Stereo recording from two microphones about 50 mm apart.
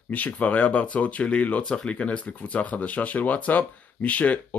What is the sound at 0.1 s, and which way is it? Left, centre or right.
Speech, left.